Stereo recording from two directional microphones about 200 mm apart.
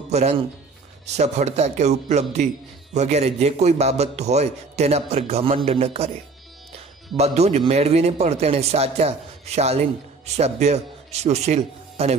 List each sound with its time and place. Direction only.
0.1 s a man's voice: 35° right (ahead or behind)
7.2 s a man's voice: 30° right (ahead or behind)